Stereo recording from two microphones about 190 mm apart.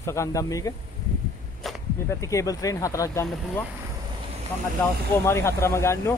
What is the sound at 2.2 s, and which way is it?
Speech, 15° left (ahead or behind).